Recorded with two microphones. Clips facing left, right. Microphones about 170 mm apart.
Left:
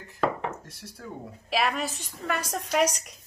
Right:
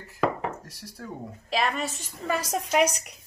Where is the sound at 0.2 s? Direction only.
5° right (ahead or behind).